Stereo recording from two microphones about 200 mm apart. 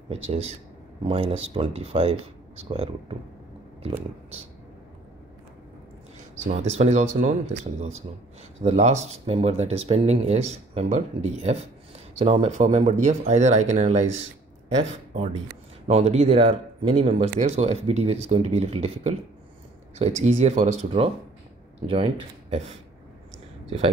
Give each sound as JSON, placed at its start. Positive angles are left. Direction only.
{"t": 0.1, "sound": "speech", "side_deg": -30}
{"t": 6.4, "sound": "speech", "side_deg": -35}
{"t": 8.6, "sound": "speech", "side_deg": -35}
{"t": 15.9, "sound": "speech", "side_deg": -35}